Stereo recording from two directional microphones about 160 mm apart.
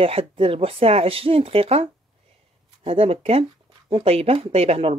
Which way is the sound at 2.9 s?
40° right (ahead or behind).